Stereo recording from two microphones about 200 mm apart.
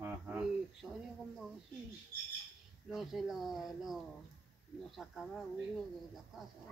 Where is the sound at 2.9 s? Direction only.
Centre (ahead or behind).